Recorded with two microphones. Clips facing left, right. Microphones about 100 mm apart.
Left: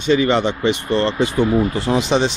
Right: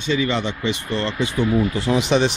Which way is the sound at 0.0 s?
60° left (ahead or behind).